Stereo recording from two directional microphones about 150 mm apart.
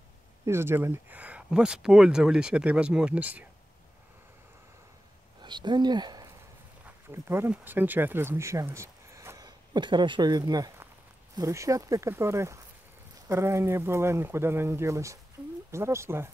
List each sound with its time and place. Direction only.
0.5 s speech: 15° right (ahead or behind)
5.4 s speech: 30° right (ahead or behind)
7.1 s speech: 15° right (ahead or behind)
9.8 s speech: 30° right (ahead or behind)
15.4 s a sound: 10° right (ahead or behind)
15.7 s speech: 20° right (ahead or behind)